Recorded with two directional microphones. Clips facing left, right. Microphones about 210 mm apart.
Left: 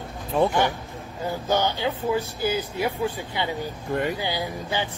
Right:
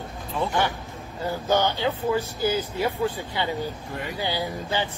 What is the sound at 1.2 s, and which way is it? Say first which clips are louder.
Speech: right 1 dB; 15° left (ahead or behind).